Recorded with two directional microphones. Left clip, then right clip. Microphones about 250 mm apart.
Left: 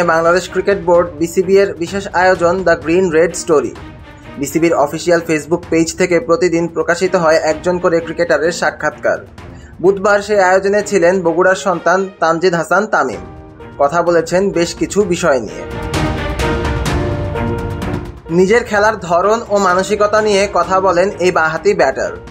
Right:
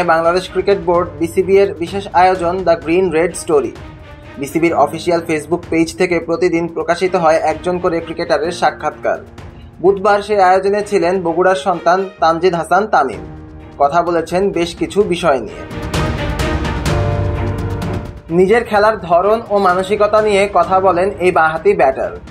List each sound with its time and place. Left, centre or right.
0.0 s speech: left
18.4 s speech: centre